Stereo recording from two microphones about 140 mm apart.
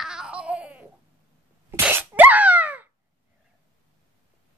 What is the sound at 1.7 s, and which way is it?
Sneeze, 15° right (ahead or behind).